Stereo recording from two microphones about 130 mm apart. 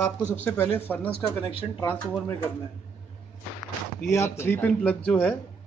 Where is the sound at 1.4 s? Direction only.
45° left (ahead or behind).